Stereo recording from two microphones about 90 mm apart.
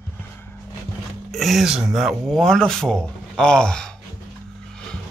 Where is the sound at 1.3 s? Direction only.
Centre (ahead or behind).